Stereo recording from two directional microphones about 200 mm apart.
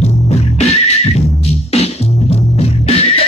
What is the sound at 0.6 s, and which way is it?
Neigh, 35° left (ahead or behind).